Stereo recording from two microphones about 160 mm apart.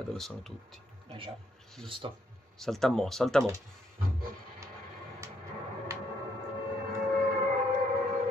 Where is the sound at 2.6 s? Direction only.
5° left (ahead or behind).